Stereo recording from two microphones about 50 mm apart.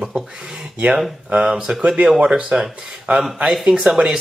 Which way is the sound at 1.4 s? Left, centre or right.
Centre.